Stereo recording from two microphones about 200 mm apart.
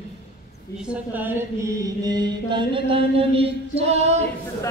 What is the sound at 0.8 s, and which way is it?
Chant, 5° right (ahead or behind).